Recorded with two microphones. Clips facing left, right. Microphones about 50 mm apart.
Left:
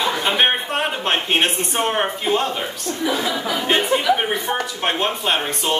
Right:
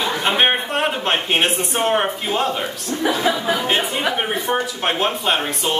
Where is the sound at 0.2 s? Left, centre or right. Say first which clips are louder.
Right 4 dB; centre.